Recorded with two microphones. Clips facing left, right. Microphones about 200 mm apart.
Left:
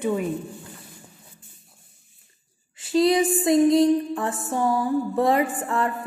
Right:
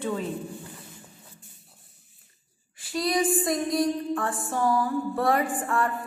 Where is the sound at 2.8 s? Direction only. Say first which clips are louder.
Left 7 dB; 25° left (ahead or behind).